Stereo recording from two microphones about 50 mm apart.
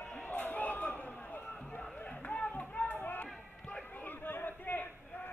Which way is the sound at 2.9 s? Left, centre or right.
Left.